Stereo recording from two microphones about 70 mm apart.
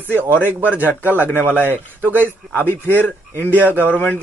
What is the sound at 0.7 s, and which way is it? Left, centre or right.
Speech, left.